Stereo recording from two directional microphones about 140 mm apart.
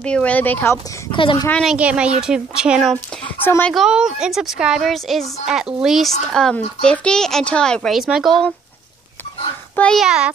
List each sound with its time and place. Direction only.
0.0 s speech: 10° left (ahead or behind)
1.1 s speech: 35° left (ahead or behind)
1.6 s a woman's voice: 5° right (ahead or behind)
3.4 s speech: 15° left (ahead or behind)
3.7 s a woman's voice: 5° right (ahead or behind)
9.8 s a child's voice: 5° left (ahead or behind)
10.0 s a child's voice: 5° right (ahead or behind)